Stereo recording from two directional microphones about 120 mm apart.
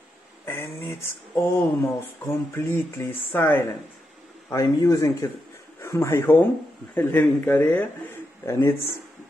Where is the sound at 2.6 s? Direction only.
20° left (ahead or behind).